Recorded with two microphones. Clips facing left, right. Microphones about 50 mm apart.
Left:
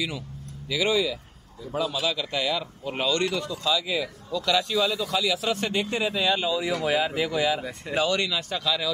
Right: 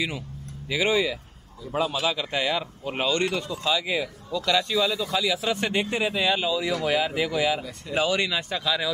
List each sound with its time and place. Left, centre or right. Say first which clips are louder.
0.7 s a man's voice: right 1 dB; right
4.3 s speech: right 1 dB; centre
5.7 s speech: right 1 dB; right
6.5 s speech: even; centre